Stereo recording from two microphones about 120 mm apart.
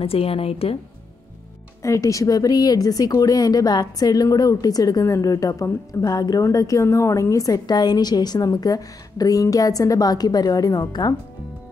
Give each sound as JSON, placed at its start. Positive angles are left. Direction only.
{"t": 0.0, "sound": "a woman's voice", "side_deg": 50}
{"t": 1.8, "sound": "speech", "side_deg": 25}